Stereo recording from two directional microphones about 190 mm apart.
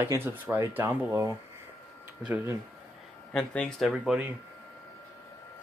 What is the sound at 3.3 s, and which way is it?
Speech, 5° left (ahead or behind).